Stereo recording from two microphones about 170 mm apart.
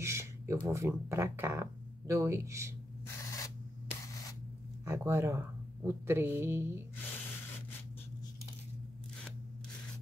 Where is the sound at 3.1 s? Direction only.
15° left (ahead or behind).